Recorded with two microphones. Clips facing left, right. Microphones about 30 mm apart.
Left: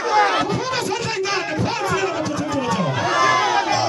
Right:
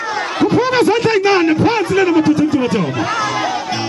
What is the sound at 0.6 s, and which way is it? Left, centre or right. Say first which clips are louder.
A man's voice: right 10 dB; right.